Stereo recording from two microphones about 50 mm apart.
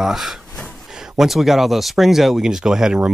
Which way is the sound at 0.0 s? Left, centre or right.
Centre.